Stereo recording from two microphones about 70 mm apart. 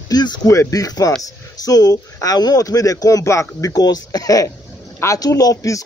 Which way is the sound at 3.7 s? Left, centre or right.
Left.